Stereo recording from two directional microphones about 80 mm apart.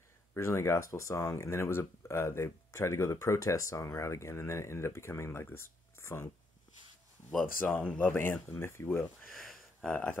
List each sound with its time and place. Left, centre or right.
0.3 s speech: left
7.9 s speech: left
9.3 s a sound: centre
9.8 s speech: centre